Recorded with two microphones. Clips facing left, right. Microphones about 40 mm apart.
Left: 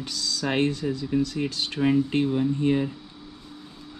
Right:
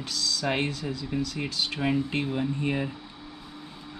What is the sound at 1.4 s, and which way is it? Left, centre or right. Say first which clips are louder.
Speech: left 4 dB; centre.